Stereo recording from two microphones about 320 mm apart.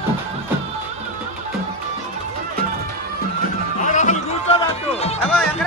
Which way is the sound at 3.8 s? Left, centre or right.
Left.